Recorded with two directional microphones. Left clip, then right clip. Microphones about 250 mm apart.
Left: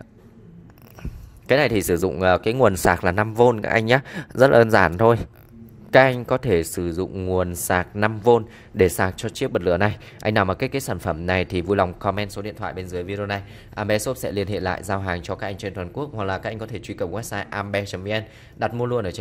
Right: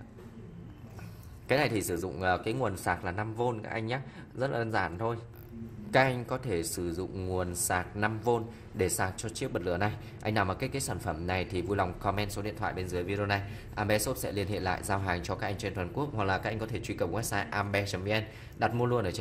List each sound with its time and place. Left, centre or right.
1.5 s speech: left